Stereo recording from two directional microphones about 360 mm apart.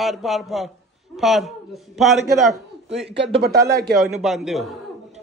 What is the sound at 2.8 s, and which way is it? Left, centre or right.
Speech, centre.